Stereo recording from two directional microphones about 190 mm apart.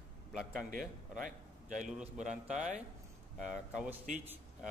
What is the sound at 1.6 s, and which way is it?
A man's voice, 40° right (ahead or behind).